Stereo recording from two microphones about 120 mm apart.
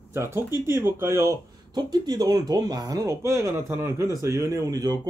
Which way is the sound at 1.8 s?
35° right (ahead or behind).